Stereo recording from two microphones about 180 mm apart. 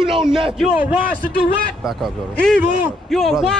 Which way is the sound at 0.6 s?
10° right (ahead or behind).